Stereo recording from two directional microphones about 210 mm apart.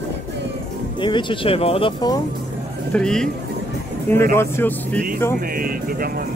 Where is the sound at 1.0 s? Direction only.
25° left (ahead or behind).